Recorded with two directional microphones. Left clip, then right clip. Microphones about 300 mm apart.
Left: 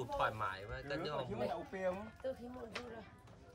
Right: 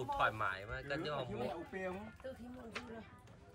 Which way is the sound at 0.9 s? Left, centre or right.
Left.